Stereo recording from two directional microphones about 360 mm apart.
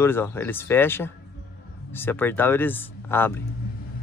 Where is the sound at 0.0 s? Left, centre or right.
Centre.